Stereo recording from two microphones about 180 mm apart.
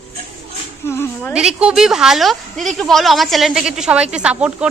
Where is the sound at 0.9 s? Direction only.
15° left (ahead or behind).